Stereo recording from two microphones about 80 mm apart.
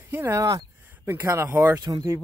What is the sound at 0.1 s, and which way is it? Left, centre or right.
Speech, right.